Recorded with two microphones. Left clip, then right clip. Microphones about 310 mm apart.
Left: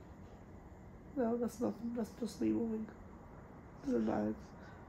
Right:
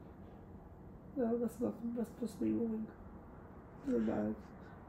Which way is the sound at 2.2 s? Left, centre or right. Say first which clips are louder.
Even; left.